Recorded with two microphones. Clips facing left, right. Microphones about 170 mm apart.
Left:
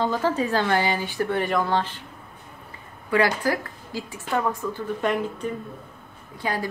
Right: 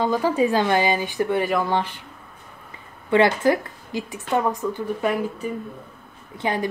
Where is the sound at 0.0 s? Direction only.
15° right (ahead or behind).